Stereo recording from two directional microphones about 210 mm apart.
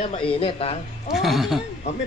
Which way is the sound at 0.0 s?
25° left (ahead or behind).